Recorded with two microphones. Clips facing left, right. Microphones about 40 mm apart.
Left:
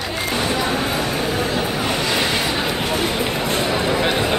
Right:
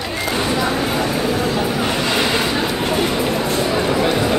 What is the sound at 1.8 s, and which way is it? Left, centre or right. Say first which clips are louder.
Vehicle: right 2 dB; right.